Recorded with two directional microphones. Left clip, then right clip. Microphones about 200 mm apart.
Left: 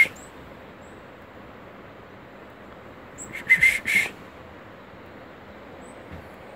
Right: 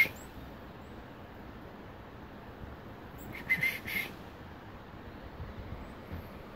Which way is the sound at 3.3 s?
15° left (ahead or behind).